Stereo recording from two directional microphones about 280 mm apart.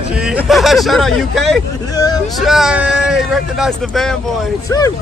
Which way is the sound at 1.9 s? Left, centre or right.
Centre.